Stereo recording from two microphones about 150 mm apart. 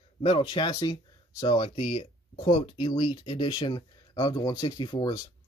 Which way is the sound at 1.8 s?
40° left (ahead or behind).